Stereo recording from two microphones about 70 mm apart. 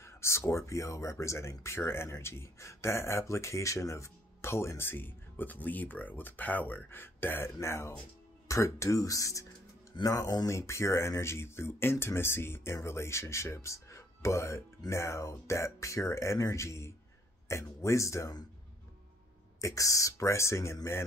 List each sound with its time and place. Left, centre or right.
0.0 s speech: left
9.9 s speech: left
19.6 s speech: left